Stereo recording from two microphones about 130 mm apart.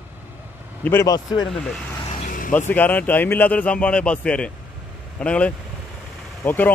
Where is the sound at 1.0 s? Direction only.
30° left (ahead or behind).